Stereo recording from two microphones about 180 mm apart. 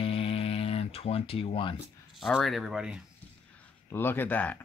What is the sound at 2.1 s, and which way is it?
Speech, centre (ahead or behind).